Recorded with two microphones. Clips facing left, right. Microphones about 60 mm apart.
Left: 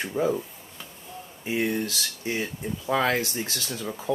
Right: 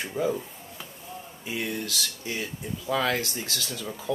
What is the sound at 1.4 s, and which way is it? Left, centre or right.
Speech, left.